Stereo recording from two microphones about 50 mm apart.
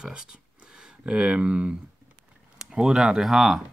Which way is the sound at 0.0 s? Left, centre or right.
Centre.